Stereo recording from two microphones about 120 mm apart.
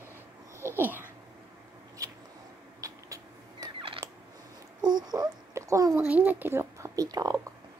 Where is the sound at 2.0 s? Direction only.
25° right (ahead or behind).